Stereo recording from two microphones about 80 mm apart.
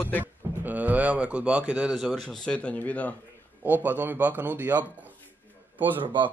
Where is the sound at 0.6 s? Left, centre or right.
Centre.